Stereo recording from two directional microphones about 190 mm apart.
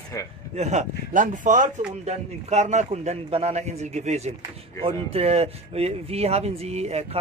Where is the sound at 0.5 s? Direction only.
35° right (ahead or behind).